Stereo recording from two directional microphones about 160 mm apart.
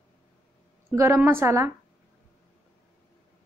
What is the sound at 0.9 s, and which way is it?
Speech, 15° right (ahead or behind).